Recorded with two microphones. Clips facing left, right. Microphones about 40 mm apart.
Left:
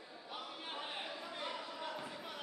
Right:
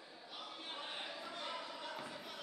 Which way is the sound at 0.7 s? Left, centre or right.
Centre.